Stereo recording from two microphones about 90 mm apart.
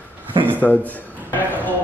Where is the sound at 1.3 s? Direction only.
20° left (ahead or behind).